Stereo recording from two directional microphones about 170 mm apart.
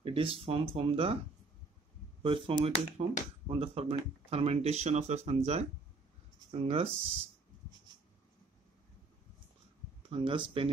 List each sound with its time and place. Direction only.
0.0 s speech: 30° right (ahead or behind)
2.2 s speech: 30° right (ahead or behind)
10.0 s speech: 35° right (ahead or behind)